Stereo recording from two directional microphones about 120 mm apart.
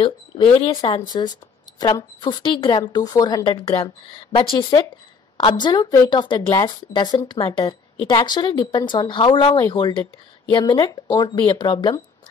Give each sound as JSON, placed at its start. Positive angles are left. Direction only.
{"t": 0.0, "sound": "speech", "side_deg": 50}
{"t": 3.6, "sound": "speech", "side_deg": 55}